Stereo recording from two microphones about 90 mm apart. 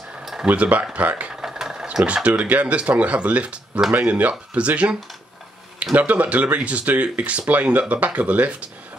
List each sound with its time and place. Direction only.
0.2 s a sound: 5° right (ahead or behind)
0.5 s speech: 15° right (ahead or behind)
5.9 s speech: 15° right (ahead or behind)